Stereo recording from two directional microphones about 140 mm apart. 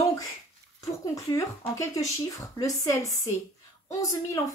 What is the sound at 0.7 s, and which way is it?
A child's voice, 25° left (ahead or behind).